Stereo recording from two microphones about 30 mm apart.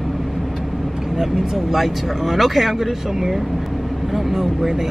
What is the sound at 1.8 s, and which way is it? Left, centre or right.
Speech, centre.